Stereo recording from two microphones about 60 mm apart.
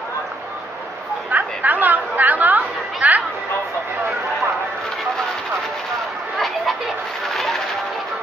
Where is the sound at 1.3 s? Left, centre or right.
Right.